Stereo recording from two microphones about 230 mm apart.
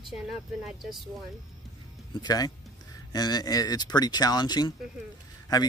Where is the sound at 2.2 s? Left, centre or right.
Centre.